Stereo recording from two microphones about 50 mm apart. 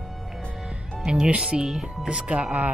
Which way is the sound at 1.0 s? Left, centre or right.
Centre.